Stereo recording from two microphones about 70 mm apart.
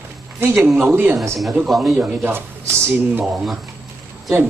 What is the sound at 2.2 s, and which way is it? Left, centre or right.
Speech, right.